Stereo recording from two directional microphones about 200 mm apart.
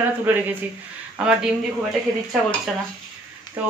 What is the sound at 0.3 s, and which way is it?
Speech, 10° right (ahead or behind).